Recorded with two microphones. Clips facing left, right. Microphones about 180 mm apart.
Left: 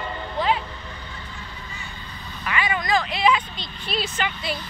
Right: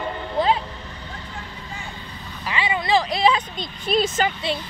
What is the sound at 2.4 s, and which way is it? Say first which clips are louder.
Vehicle: right 1 dB; 25° right (ahead or behind).